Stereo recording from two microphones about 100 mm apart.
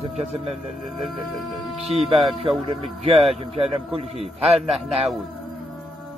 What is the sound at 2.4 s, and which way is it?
Speech, 80° right.